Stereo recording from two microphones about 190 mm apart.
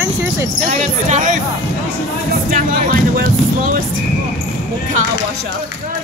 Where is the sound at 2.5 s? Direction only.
50° right (ahead or behind).